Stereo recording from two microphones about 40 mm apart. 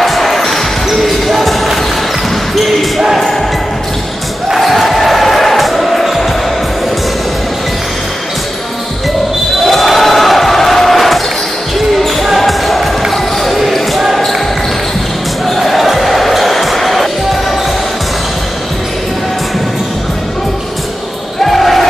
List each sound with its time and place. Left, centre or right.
0.0 s basketball bounce: centre
4.6 s music: centre
9.7 s basketball bounce: centre
12.4 s basketball bounce: centre
15.4 s basketball bounce: centre
21.5 s basketball bounce: centre